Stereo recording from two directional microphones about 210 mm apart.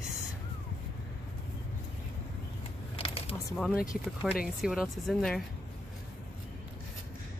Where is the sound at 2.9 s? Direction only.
30° left (ahead or behind).